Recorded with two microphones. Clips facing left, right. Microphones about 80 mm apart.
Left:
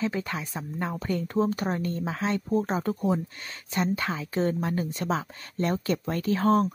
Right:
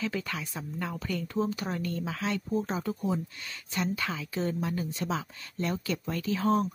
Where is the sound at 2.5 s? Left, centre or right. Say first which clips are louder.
Left 4 dB; left.